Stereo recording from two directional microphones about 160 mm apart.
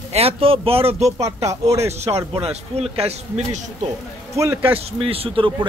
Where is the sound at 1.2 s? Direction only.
20° right (ahead or behind).